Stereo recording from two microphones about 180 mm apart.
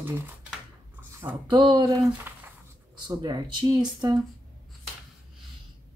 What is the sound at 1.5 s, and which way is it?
Speech, 25° right (ahead or behind).